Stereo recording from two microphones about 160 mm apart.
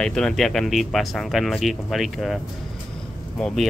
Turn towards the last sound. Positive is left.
turn(degrees=5)  # may be behind; listen again after turning